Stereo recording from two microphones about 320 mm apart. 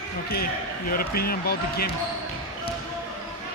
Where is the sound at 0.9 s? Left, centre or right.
Left.